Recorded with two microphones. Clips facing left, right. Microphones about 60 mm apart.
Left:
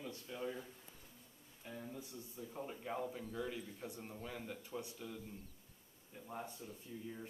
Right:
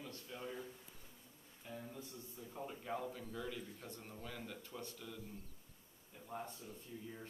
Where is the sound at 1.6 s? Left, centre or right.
Centre.